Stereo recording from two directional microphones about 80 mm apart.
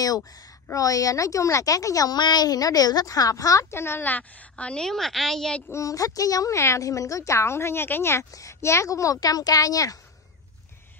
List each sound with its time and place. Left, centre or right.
0.0 s speech: left
3.7 s a woman's voice: left; by 5.6 s centre
5.7 s speech: left